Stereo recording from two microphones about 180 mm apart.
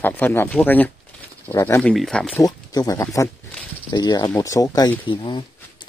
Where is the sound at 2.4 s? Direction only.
20° left (ahead or behind).